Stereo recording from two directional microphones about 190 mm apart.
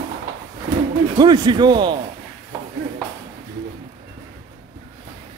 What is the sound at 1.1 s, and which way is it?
Speech, 20° right (ahead or behind).